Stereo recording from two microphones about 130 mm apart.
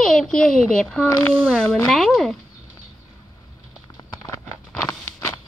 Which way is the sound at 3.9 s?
25° left (ahead or behind).